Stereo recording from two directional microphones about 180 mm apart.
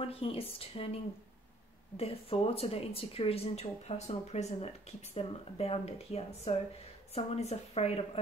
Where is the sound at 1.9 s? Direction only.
35° left (ahead or behind).